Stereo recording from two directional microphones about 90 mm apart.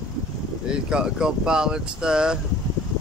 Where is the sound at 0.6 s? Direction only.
10° right (ahead or behind).